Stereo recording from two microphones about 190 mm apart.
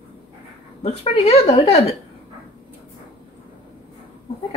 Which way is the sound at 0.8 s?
35° left (ahead or behind).